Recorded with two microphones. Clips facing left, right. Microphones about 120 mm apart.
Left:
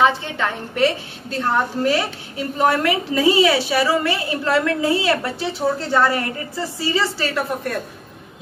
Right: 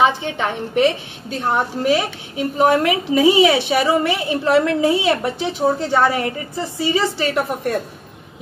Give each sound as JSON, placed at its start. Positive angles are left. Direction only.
{"t": 0.0, "sound": "a woman's voice", "side_deg": -20}